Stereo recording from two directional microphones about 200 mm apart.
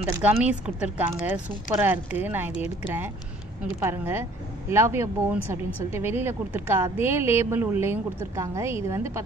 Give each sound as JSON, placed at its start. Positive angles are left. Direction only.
{"t": 0.2, "sound": "a woman's voice", "side_deg": -5}
{"t": 3.8, "sound": "a woman's voice", "side_deg": -10}